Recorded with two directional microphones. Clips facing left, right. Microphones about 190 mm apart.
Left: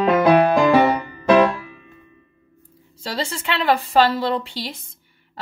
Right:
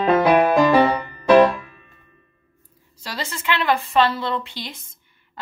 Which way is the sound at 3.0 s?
30° left (ahead or behind).